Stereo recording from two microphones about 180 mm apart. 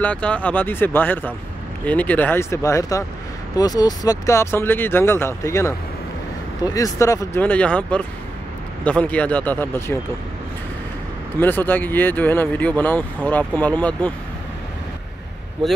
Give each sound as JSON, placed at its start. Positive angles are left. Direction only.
{"t": 0.0, "sound": "speech", "side_deg": 5}
{"t": 11.3, "sound": "speech", "side_deg": 10}